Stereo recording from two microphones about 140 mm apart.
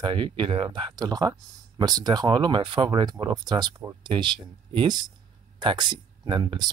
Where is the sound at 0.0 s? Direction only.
35° right (ahead or behind).